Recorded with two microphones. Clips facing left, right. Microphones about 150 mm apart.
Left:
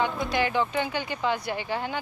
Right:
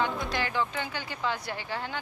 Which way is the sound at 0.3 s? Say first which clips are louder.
Left 5 dB; 15° left (ahead or behind).